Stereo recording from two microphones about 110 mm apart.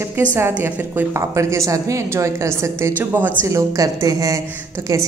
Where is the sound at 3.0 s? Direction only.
15° right (ahead or behind).